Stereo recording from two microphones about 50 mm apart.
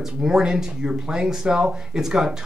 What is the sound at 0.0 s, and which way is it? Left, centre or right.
Speech, centre.